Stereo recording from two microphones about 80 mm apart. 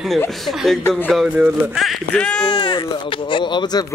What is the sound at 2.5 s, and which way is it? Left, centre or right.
Speech, left.